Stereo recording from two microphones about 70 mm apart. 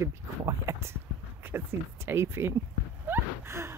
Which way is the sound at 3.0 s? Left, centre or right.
Right.